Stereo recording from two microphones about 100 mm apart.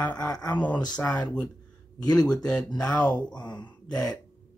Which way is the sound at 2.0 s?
40° left (ahead or behind).